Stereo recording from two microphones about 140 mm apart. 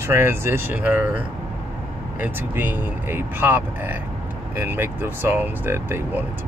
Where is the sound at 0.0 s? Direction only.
15° right (ahead or behind).